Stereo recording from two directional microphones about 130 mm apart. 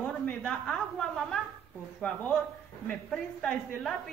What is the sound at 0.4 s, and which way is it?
A woman's voice, 5° left (ahead or behind).